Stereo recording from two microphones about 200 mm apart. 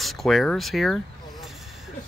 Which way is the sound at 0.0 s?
Centre (ahead or behind).